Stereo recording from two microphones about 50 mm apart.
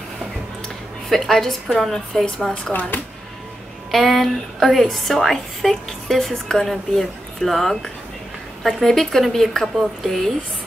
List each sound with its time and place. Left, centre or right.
1.0 s a woman's voice: centre
2.2 s a woman's voice: centre
2.7 s speech: left
3.9 s a woman's voice: centre